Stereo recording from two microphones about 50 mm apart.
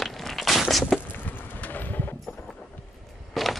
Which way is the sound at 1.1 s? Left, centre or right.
Left.